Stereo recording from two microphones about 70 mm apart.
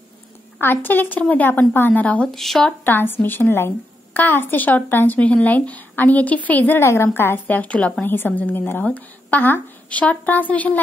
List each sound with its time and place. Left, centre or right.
0.6 s a woman's voice: left
2.3 s speech: centre
2.8 s a woman's voice: left
6.8 s a woman's voice: left